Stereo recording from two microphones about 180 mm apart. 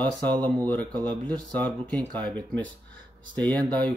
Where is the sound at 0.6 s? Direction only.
5° left (ahead or behind).